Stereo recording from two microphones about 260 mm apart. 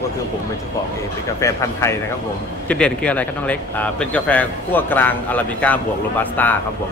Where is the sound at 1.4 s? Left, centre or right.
Centre.